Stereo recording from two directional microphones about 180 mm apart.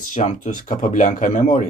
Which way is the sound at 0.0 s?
45° left (ahead or behind).